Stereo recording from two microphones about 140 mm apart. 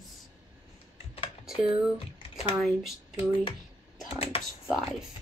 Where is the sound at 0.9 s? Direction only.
45° left (ahead or behind).